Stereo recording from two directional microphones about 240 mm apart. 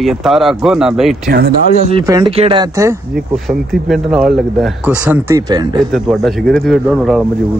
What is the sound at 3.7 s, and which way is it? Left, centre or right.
Speech, centre.